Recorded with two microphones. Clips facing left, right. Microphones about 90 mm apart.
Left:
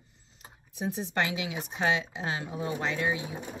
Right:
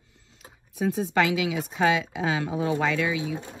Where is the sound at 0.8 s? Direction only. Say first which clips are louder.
Right 7 dB; 90° right.